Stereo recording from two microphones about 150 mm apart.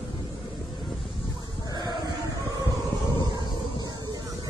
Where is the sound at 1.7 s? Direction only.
25° right (ahead or behind).